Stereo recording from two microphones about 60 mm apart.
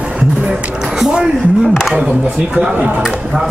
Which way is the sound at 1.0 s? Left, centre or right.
Centre.